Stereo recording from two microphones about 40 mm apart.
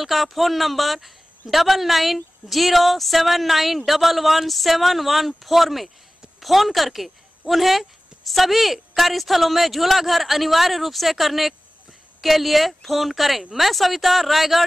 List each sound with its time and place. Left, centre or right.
0.0 s a woman's voice: centre